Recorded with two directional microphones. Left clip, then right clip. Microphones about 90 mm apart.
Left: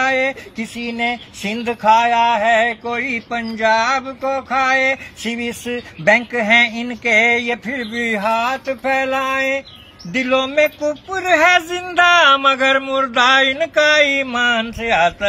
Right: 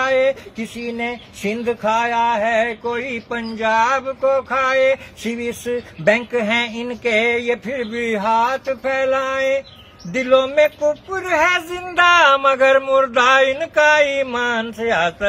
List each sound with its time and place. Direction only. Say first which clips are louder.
0.0 s speech: right 1 dB; 35° right (ahead or behind)